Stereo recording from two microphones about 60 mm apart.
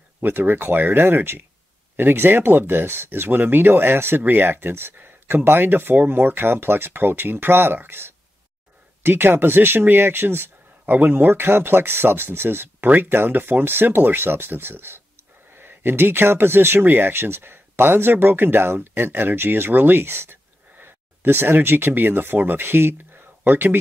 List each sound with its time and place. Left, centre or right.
0.2 s speech: right